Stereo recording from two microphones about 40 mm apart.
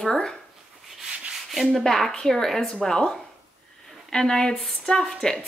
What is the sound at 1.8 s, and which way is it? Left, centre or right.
Speech, centre.